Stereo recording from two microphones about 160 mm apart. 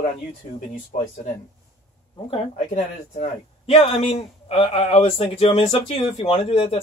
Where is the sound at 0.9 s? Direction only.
55° left (ahead or behind).